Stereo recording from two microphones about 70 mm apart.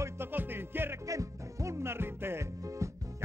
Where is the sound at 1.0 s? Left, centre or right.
Right.